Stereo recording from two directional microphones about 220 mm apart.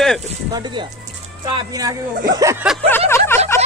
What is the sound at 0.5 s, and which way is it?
Speech, 20° right (ahead or behind).